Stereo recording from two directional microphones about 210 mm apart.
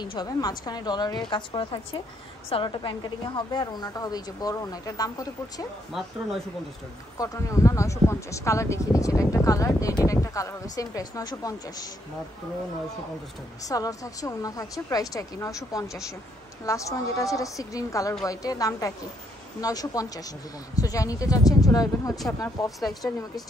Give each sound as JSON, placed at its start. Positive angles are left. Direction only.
{"t": 0.0, "sound": "a woman's voice", "side_deg": 20}
{"t": 5.9, "sound": "speech", "side_deg": 0}
{"t": 7.2, "sound": "a woman's voice", "side_deg": 15}
{"t": 13.7, "sound": "a woman's voice", "side_deg": 15}
{"t": 22.8, "sound": "speech", "side_deg": 0}